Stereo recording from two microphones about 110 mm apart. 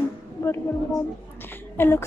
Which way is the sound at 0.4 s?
20° left (ahead or behind).